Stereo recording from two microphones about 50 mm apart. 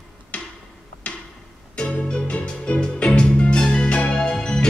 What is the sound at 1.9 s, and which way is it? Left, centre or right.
Music, left.